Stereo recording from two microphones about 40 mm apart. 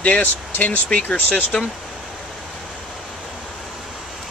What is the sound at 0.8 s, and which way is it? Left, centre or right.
Speech, left.